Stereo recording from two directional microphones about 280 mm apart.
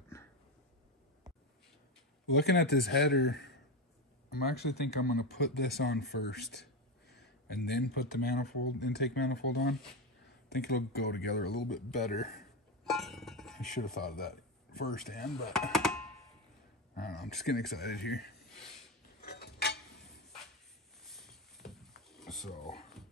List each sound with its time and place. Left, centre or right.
2.3 s speech: left
12.8 s music: centre
13.7 s speech: left
15.5 s a sound: centre
17.5 s speech: left
19.2 s mechanisms: left
21.1 s a sound: centre